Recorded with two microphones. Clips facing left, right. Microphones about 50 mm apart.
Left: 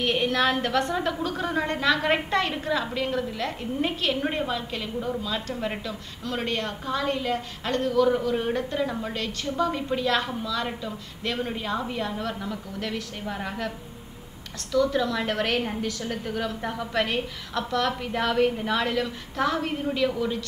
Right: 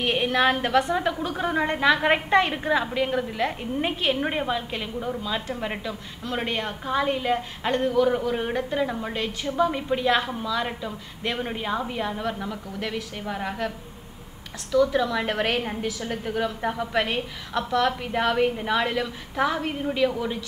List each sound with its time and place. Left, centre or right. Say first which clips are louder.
0.0 s a woman's voice: right 2 dB; centre
14.7 s a woman's voice: right 2 dB; centre